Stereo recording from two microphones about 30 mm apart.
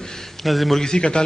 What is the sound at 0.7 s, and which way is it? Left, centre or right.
Speech, left.